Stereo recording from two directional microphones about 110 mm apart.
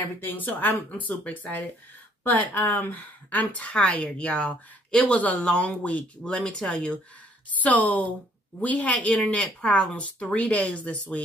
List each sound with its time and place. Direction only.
0.2 s a woman's voice: 15° left (ahead or behind)